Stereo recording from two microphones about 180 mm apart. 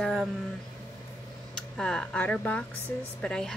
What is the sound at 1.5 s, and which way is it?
A woman's voice, 5° left (ahead or behind).